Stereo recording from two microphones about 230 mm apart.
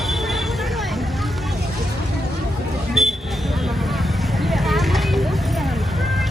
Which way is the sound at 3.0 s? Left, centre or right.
Centre.